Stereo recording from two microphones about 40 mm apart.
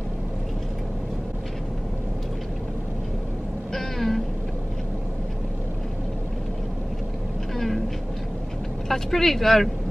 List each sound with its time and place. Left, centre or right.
3.7 s a sound: centre
7.5 s vehicle: centre
8.8 s speech: centre